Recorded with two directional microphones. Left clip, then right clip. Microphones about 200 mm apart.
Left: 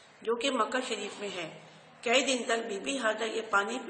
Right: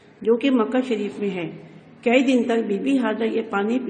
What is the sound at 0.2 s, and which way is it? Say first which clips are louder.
Speech: right 10 dB; 15° right (ahead or behind).